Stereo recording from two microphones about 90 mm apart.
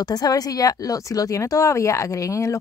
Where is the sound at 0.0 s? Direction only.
45° left (ahead or behind).